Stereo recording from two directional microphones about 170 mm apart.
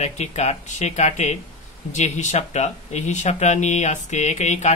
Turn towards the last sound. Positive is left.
turn(degrees=45)  # may be behind; listen again after turning